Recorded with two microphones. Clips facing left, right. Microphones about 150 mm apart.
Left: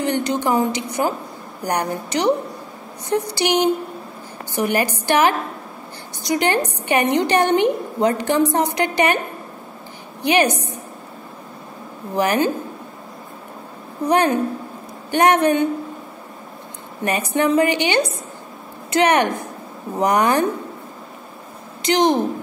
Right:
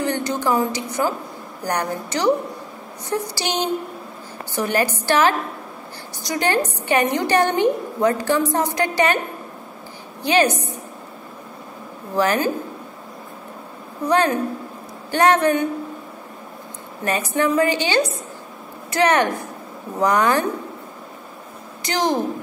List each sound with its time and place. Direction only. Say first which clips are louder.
0.0 s a woman's voice: left 2 dB; 20° left (ahead or behind)
10.2 s a woman's voice: left 1 dB; 15° left (ahead or behind)
12.2 s a woman's voice: left 1 dB; 15° left (ahead or behind)
14.0 s a woman's voice: left 1 dB; 15° left (ahead or behind)
17.0 s a woman's voice: left 1 dB; 20° left (ahead or behind)
21.8 s a woman's voice: left 4 dB; 20° left (ahead or behind)